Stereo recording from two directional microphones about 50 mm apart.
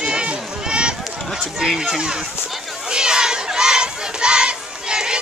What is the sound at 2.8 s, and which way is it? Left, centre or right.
Crowd, centre.